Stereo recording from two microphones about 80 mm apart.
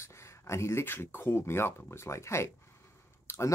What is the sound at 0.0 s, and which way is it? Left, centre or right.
Speech, left.